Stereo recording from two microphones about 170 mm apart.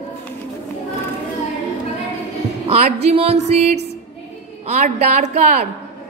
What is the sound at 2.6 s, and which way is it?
A woman's voice, 40° right (ahead or behind).